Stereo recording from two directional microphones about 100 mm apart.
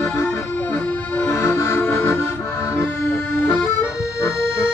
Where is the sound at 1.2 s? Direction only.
25° left (ahead or behind).